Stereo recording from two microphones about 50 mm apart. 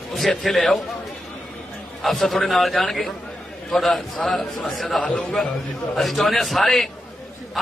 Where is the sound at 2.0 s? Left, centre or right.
Centre.